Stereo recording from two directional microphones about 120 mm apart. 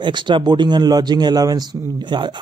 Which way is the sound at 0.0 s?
40° right (ahead or behind).